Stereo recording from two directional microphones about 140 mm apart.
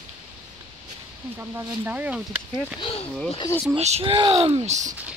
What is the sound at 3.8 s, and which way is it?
Speech, 45° right (ahead or behind).